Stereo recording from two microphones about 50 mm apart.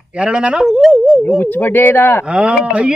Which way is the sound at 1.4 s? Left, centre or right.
Left.